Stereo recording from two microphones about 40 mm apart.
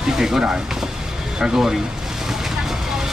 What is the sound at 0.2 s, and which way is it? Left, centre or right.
Speech, centre.